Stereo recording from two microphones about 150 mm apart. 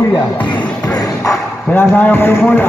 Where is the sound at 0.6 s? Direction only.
10° left (ahead or behind).